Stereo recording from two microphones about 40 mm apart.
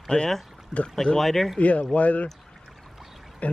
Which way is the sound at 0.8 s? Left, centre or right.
Centre.